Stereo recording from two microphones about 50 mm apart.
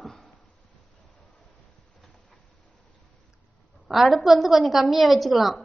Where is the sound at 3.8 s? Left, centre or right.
Centre.